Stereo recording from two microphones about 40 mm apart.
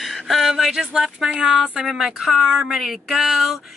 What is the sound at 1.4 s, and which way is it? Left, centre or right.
Speech, right.